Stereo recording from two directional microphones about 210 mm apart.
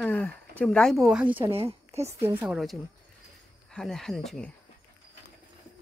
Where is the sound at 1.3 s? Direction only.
25° right (ahead or behind).